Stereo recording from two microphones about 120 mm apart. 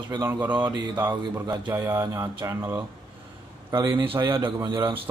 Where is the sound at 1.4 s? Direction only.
35° right (ahead or behind).